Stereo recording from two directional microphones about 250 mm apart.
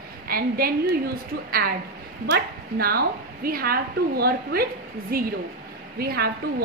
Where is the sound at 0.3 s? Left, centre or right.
Right.